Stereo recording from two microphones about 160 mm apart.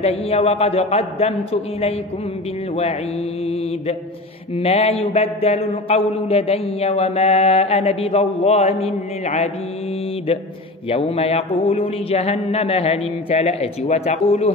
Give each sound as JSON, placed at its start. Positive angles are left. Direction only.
{"t": 0.0, "sound": "mantra", "side_deg": 40}
{"t": 4.6, "sound": "mantra", "side_deg": 40}
{"t": 10.9, "sound": "mantra", "side_deg": 40}